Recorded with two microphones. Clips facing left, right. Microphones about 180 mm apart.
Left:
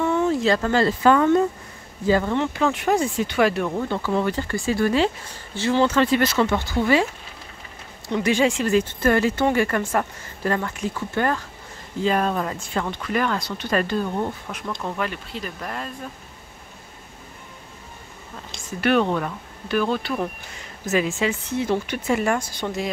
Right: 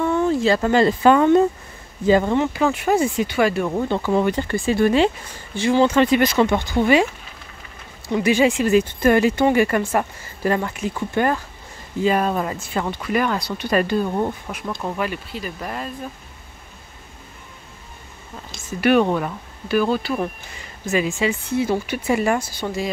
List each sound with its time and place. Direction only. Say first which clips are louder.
0.2 s a sound: right 3 dB; centre (ahead or behind)
0.6 s speech: right 4 dB; 15° right (ahead or behind)
2.3 s speech: right 3 dB; 10° right (ahead or behind)
3.7 s speech: right 4 dB; 20° right (ahead or behind)
8.1 s speech: right 3 dB; 10° right (ahead or behind)
18.7 s speech: right 3 dB; 10° right (ahead or behind)